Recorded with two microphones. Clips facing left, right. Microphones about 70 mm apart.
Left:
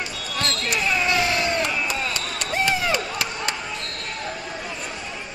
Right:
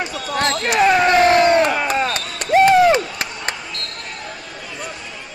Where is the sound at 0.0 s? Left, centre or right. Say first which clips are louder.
Right 7 dB; right.